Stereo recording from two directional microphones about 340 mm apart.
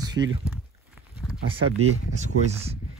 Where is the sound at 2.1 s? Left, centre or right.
Centre.